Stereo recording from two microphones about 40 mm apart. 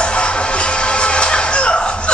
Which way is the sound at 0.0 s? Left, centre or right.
Left.